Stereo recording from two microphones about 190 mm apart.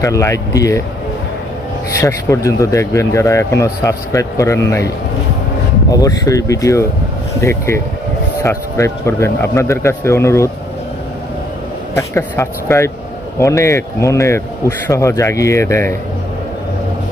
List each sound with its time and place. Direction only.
0.0 s speech: 15° left (ahead or behind)
2.0 s speech: 15° left (ahead or behind)
11.9 s speech: 15° left (ahead or behind)